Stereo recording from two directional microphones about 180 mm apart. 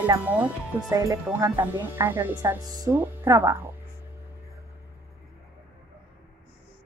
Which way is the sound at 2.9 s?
10° right (ahead or behind).